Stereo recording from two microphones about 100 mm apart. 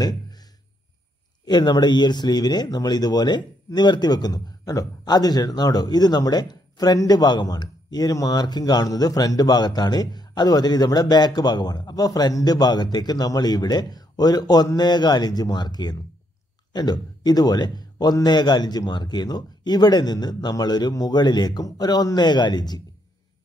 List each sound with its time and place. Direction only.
1.4 s speech: 45° left (ahead or behind)